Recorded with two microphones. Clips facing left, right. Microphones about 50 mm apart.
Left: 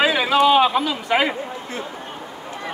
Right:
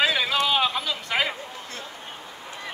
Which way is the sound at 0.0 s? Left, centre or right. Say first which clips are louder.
Left 6 dB; centre.